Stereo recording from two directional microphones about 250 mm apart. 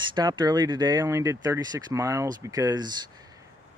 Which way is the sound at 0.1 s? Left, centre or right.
Centre.